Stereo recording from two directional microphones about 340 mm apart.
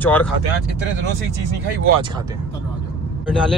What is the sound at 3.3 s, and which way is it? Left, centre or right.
Speech, centre.